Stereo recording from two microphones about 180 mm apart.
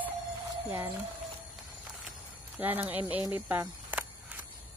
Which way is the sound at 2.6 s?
10° right (ahead or behind).